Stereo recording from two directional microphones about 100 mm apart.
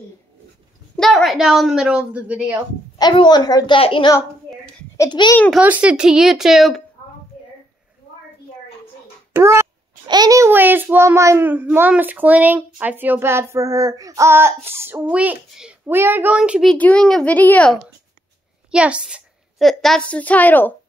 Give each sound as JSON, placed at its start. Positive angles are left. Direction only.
{"t": 0.9, "sound": "a woman's voice", "side_deg": 5}
{"t": 3.0, "sound": "a woman's voice", "side_deg": 50}
{"t": 3.8, "sound": "a child's voice", "side_deg": 60}
{"t": 5.2, "sound": "a woman's voice", "side_deg": 50}
{"t": 5.6, "sound": "a woman's voice", "side_deg": -15}
{"t": 9.3, "sound": "a sound", "side_deg": -25}
{"t": 10.0, "sound": "a sound", "side_deg": -45}
{"t": 10.5, "sound": "speech", "side_deg": -20}
{"t": 15.0, "sound": "a child's voice", "side_deg": -15}
{"t": 16.7, "sound": "a child's voice", "side_deg": 15}
{"t": 18.7, "sound": "a child's voice", "side_deg": -10}
{"t": 19.6, "sound": "a woman's voice", "side_deg": 5}
{"t": 20.1, "sound": "a child's voice", "side_deg": 15}